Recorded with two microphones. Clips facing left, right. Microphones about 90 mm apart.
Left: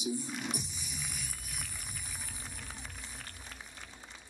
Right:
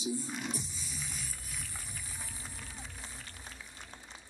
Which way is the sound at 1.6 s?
70° left (ahead or behind).